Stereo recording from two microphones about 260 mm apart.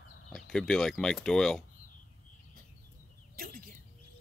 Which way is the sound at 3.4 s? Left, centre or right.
Right.